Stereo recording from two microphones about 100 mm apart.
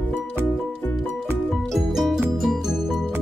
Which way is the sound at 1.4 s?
5° left (ahead or behind).